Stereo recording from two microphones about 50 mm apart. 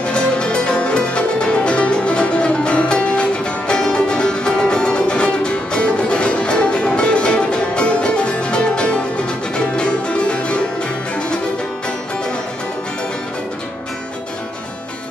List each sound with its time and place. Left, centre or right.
0.0 s music: left